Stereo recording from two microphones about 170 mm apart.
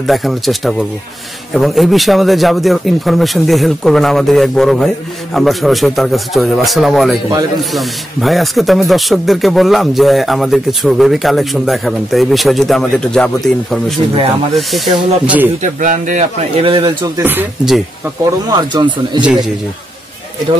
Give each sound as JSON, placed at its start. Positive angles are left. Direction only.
{"t": 0.0, "sound": "speech", "side_deg": 0}
{"t": 15.6, "sound": "speech", "side_deg": -50}
{"t": 17.2, "sound": "speech", "side_deg": -10}
{"t": 18.5, "sound": "speech", "side_deg": -25}